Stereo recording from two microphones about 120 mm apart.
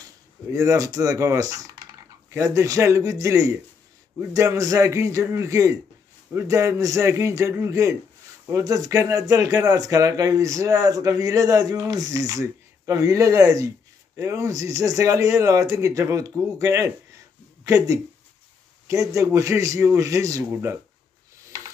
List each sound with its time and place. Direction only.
0.5 s speech: 25° right (ahead or behind)